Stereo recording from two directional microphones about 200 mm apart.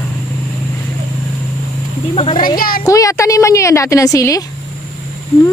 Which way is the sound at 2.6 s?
45° left (ahead or behind).